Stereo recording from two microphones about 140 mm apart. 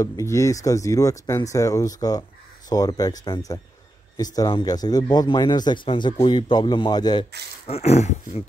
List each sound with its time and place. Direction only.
0.0 s speech: 20° left (ahead or behind)
7.6 s speech: 45° left (ahead or behind)